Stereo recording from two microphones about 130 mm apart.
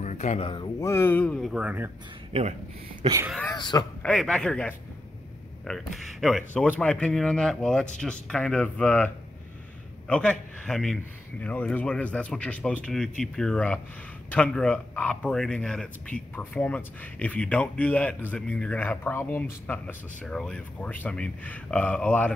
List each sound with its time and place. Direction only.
0.0 s a sound: 65° left (ahead or behind)
0.4 s speech: 40° left (ahead or behind)
0.7 s speech: 20° left (ahead or behind)
1.4 s speech: 5° right (ahead or behind)
2.3 s speech: 55° right (ahead or behind)
3.5 s a man's voice: 35° left (ahead or behind)
4.0 s a man's voice: 5° left (ahead or behind)